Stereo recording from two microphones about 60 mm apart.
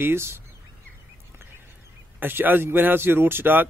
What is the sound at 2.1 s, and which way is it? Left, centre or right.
Speech, right.